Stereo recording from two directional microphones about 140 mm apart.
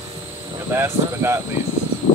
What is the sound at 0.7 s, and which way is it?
Cricket, 15° right (ahead or behind).